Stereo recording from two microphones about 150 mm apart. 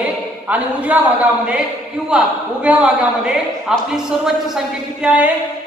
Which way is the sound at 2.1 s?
5° right (ahead or behind).